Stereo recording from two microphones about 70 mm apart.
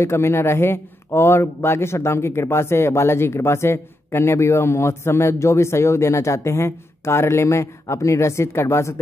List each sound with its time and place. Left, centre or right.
0.0 s a man's voice: left